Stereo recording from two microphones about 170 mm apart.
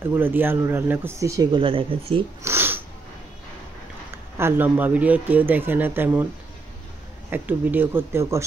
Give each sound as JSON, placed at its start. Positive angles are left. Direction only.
{"t": 0.0, "sound": "speech", "side_deg": -15}
{"t": 2.4, "sound": "speech", "side_deg": -15}
{"t": 4.4, "sound": "speech", "side_deg": -15}
{"t": 7.2, "sound": "speech", "side_deg": -10}